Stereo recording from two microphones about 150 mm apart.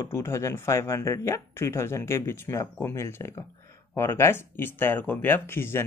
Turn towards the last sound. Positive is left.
turn(degrees=15)  # may be behind; listen again after turning